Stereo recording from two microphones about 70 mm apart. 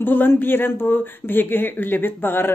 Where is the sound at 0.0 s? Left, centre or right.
Left.